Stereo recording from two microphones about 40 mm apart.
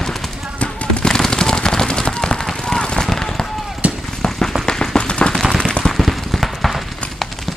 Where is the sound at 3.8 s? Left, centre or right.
Right.